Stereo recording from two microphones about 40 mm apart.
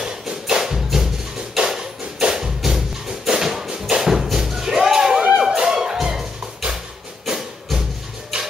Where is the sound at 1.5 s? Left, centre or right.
Centre.